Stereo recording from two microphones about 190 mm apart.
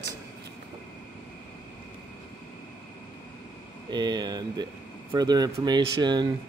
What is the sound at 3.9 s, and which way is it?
Speech, 20° right (ahead or behind).